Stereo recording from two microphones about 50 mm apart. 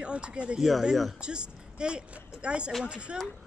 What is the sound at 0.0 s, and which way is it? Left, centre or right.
Speech, right.